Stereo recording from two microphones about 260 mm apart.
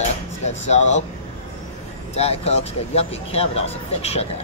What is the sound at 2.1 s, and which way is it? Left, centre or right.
Speech, left.